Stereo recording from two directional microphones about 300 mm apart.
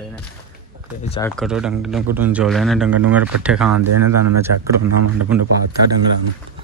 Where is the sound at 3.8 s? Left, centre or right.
Right.